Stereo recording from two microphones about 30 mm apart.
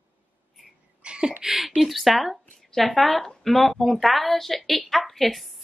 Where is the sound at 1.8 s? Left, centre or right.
Centre.